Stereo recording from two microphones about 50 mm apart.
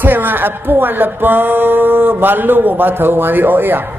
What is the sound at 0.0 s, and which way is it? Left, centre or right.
A man's voice, right.